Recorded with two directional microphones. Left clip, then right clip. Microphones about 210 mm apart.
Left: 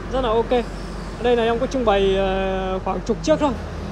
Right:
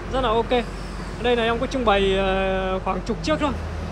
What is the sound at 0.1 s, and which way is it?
Speech, 15° left (ahead or behind).